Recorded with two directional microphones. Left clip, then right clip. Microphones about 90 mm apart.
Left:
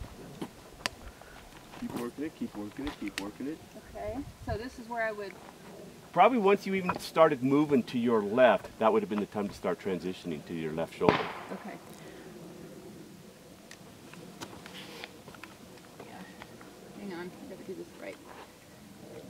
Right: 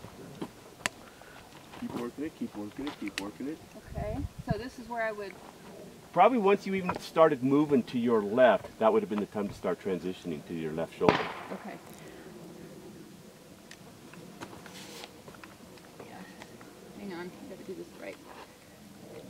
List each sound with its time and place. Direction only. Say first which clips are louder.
0.4 s tick-tock: right 1 dB; 20° left (ahead or behind)
1.8 s speech: even; 15° left (ahead or behind)
3.0 s speech: even; 5° left (ahead or behind)
6.1 s speech: even; 15° left (ahead or behind)
11.1 s speech: right 1 dB; 15° right (ahead or behind)
11.4 s speech: right 1 dB; 5° left (ahead or behind)